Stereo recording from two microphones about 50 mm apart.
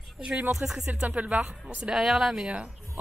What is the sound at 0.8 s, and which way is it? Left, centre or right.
Speech, right.